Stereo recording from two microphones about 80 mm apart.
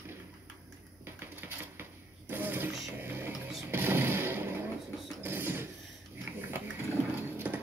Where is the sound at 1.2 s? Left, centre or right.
Right.